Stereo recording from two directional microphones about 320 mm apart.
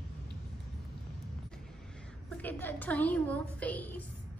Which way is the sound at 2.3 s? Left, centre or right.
Centre.